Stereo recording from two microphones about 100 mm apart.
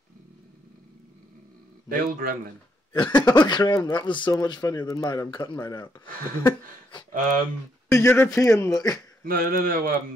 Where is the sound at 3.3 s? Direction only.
45° left (ahead or behind).